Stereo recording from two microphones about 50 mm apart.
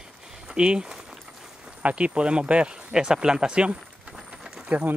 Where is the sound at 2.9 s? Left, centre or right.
Centre.